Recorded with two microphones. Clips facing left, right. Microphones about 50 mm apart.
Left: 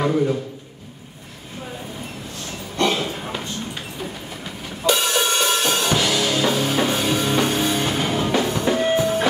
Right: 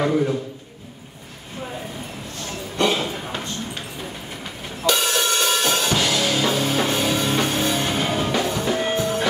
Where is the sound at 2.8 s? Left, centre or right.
Centre.